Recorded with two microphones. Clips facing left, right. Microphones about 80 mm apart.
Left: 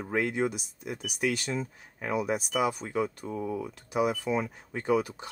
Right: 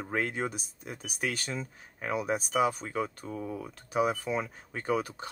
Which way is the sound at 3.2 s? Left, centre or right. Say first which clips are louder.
Left 3 dB; left.